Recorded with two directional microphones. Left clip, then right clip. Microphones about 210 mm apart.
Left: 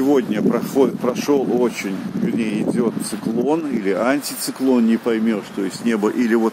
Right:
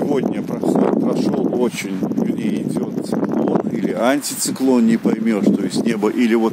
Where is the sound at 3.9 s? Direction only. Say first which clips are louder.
Right 1 dB; 25° right (ahead or behind).